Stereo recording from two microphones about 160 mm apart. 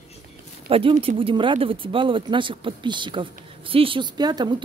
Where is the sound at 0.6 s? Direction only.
35° right (ahead or behind).